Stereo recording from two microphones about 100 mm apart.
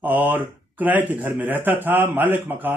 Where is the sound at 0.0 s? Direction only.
20° right (ahead or behind).